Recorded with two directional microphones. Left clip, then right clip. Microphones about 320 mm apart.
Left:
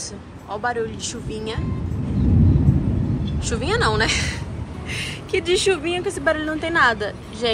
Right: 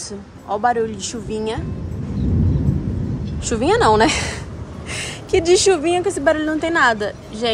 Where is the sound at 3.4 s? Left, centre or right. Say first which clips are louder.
Right 6 dB; right.